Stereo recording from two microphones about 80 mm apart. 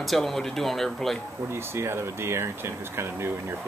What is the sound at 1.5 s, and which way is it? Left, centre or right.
Speech, right.